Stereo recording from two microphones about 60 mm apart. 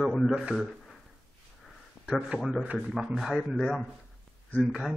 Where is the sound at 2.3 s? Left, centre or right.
Left.